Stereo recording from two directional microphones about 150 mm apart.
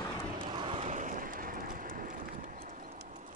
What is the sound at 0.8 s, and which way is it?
Vehicle, 55° right (ahead or behind).